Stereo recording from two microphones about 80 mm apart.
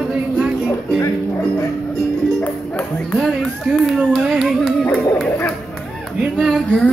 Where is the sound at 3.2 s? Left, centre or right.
Centre.